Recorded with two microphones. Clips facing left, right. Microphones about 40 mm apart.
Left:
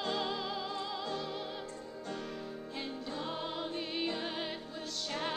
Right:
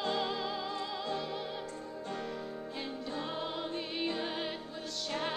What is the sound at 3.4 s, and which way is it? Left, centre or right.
Music, centre.